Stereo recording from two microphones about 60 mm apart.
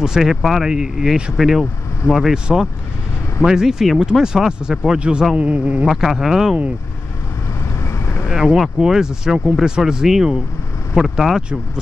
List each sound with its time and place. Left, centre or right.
0.0 s speech: centre
3.4 s speech: centre
5.9 s speech: centre
8.3 s speech: centre